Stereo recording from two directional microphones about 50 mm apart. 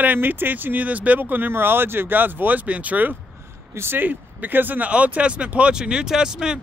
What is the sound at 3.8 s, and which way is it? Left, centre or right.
Speech, right.